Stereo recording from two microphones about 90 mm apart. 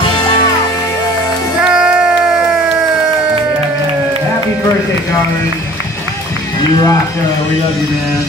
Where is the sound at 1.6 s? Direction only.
10° right (ahead or behind).